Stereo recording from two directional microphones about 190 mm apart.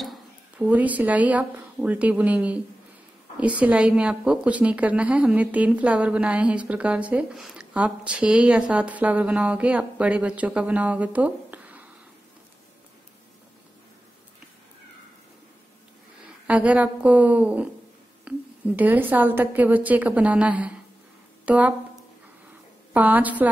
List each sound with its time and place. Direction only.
0.0 s a woman's voice: 5° right (ahead or behind)
16.4 s a woman's voice: 5° right (ahead or behind)
22.9 s a woman's voice: 10° right (ahead or behind)